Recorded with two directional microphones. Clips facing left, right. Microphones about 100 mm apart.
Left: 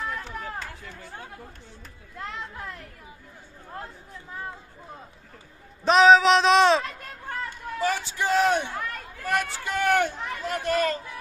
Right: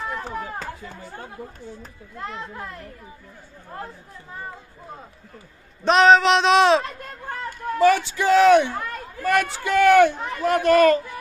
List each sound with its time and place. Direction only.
0.1 s run: 40° right (ahead or behind)
2.1 s a man's voice: centre (ahead or behind)
5.9 s a man's voice: centre (ahead or behind)
7.8 s speech: 85° right
9.7 s speech: 90° right; by 11.0 s 75° right (ahead or behind)